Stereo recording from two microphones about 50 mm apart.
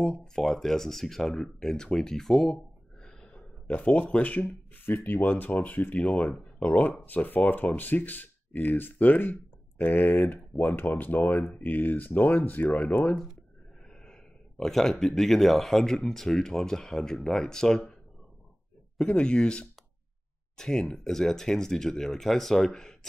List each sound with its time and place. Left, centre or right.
0.0 s speech: centre
2.5 s a sound: centre
3.7 s speech: left
4.8 s speech: left
5.9 s speech: left
14.6 s speech: centre
18.9 s speech: centre